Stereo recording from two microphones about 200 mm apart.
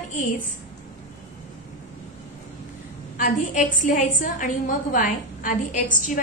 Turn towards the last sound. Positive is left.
turn(degrees=40)  # may be behind; listen again after turning